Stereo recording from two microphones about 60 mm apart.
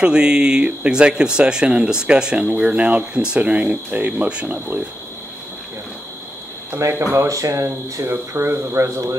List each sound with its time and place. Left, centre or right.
0.0 s speech: centre
6.8 s speech: right